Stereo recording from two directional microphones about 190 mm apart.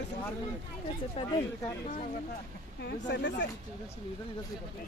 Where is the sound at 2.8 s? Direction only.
65° left (ahead or behind).